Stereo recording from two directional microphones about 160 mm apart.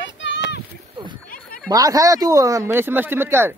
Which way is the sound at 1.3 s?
60° left (ahead or behind).